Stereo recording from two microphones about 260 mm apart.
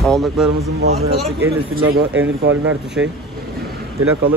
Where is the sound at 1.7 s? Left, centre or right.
Right.